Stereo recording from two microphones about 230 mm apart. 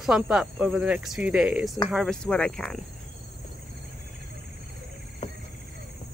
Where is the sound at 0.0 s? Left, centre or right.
Centre.